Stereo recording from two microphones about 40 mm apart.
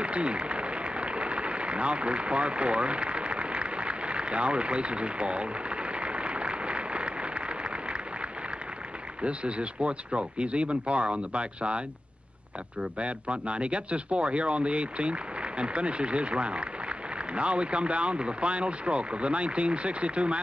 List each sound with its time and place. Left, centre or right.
0.0 s a sound: right
9.2 s speech: right
13.0 s speech: right